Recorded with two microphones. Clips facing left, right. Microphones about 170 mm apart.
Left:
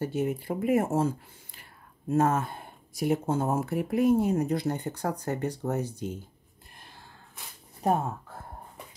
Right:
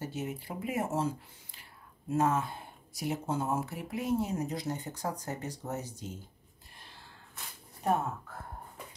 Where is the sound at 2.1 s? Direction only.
50° left (ahead or behind).